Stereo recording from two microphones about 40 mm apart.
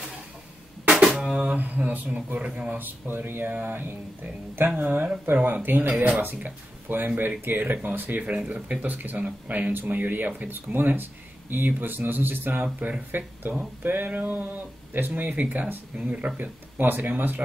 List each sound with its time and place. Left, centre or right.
1.3 s mantra: right
2.8 s speech: right
3.8 s speech: right
4.6 s speech: right
8.2 s speech: right